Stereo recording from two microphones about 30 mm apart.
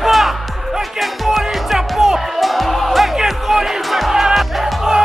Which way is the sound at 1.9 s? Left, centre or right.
Centre.